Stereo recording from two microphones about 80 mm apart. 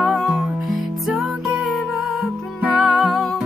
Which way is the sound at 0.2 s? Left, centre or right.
Centre.